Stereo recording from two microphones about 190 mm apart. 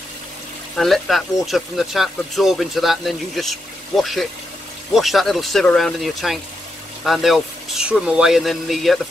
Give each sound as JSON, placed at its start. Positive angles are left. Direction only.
{"t": 0.7, "sound": "speech", "side_deg": 0}